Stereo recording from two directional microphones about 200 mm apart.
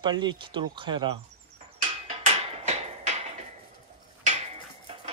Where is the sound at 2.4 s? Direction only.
35° right (ahead or behind).